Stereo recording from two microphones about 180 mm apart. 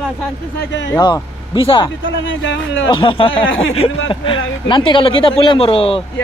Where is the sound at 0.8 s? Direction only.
20° left (ahead or behind).